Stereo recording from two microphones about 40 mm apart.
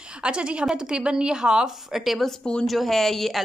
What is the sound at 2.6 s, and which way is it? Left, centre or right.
Speech, centre.